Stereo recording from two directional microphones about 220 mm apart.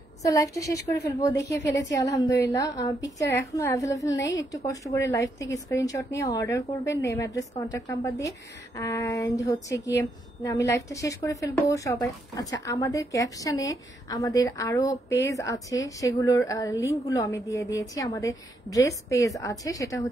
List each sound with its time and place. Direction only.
0.2 s a woman's voice: 15° left (ahead or behind)